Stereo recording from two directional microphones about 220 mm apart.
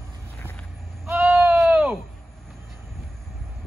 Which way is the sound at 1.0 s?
5° right (ahead or behind).